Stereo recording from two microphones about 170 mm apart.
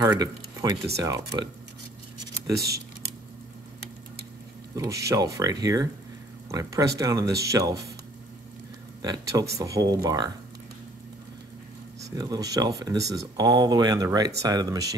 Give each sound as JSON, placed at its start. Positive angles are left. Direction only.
{"t": 0.0, "sound": "speech", "side_deg": -20}
{"t": 2.6, "sound": "typing", "side_deg": -70}
{"t": 4.7, "sound": "speech", "side_deg": -20}
{"t": 9.0, "sound": "speech", "side_deg": -20}
{"t": 12.0, "sound": "speech", "side_deg": -20}